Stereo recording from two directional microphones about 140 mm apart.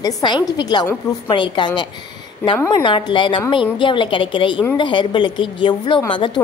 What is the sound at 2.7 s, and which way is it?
A woman's voice, 35° left (ahead or behind).